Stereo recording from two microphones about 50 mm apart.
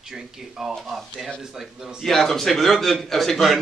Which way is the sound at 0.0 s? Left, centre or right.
Centre.